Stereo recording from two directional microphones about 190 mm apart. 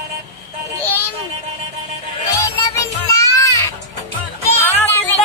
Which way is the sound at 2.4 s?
20° left (ahead or behind).